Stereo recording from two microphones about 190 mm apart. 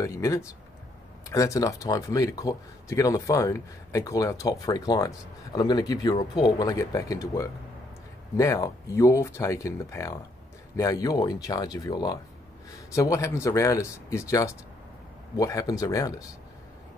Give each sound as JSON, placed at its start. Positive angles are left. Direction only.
{"t": 0.0, "sound": "speech", "side_deg": 15}